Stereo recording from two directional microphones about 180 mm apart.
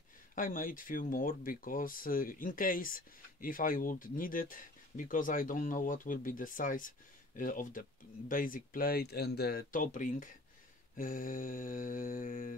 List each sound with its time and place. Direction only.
0.4 s speech: 50° left (ahead or behind)